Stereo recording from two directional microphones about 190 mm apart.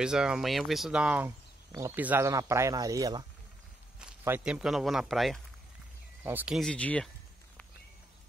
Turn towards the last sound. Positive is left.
turn(degrees=5)  # may be behind; listen again after turning